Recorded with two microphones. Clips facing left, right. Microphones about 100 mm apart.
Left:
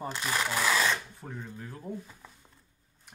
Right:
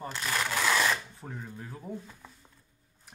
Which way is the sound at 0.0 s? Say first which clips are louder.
Left 1 dB; 15° left (ahead or behind).